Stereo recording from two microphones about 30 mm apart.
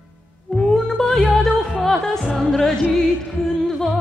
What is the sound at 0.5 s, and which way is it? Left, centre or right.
Music, centre.